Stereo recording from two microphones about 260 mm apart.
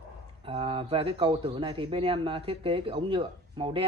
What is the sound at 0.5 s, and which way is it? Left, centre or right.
A man's voice, right.